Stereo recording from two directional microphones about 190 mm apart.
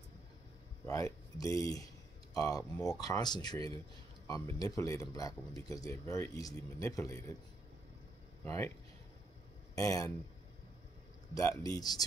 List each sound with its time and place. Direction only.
0.8 s speech: 15° left (ahead or behind)
8.5 s speech: 15° left (ahead or behind)
9.8 s speech: 15° left (ahead or behind)
11.3 s speech: 15° left (ahead or behind)